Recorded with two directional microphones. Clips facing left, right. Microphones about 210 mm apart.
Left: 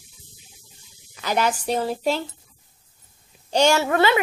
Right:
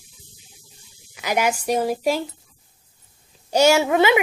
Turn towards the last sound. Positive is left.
turn(degrees=-15)  # may be behind; listen again after turning